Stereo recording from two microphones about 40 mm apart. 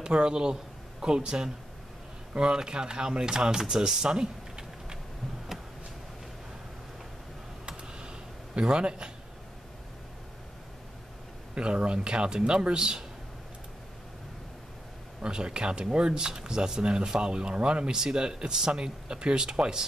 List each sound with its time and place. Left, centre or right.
0.0 s speech: right
7.6 s computer keyboard: right
8.5 s speech: right
11.5 s speech: right
15.2 s speech: right